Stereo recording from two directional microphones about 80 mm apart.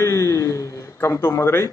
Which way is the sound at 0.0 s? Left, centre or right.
Left.